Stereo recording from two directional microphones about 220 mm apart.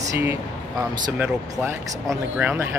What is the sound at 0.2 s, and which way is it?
Speech, 10° right (ahead or behind).